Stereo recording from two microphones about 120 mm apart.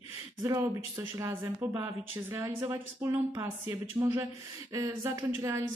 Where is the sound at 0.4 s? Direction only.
25° right (ahead or behind).